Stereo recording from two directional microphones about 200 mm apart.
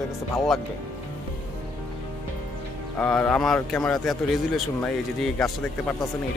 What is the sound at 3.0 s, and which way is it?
A man's voice, 5° left (ahead or behind).